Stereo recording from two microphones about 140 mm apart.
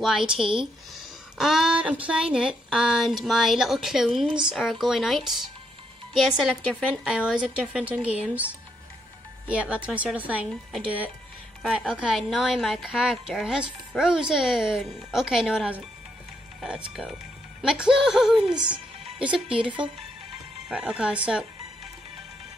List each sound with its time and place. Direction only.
0.0 s a woman's voice: 5° right (ahead or behind)
9.5 s a woman's voice: 10° right (ahead or behind)
20.6 s a woman's voice: 10° right (ahead or behind)